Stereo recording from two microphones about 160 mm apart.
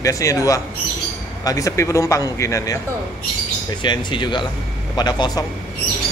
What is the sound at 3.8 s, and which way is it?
Speech, 30° left (ahead or behind).